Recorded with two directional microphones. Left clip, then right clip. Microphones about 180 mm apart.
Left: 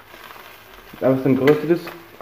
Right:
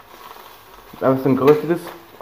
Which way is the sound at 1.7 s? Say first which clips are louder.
Left 2 dB; 20° left (ahead or behind).